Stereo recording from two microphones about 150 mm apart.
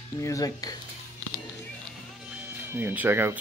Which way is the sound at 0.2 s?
20° left (ahead or behind).